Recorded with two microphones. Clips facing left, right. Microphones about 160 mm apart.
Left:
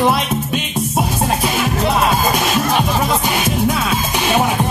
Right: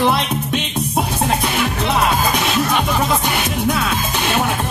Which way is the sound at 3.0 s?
5° left (ahead or behind).